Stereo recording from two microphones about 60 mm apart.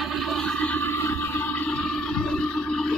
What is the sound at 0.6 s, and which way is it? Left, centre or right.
Toilet flush, left.